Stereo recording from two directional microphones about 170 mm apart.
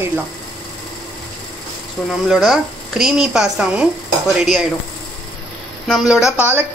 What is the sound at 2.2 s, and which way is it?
Speech, centre (ahead or behind).